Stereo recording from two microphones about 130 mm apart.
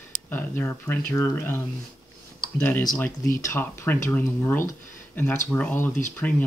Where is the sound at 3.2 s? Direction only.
20° left (ahead or behind).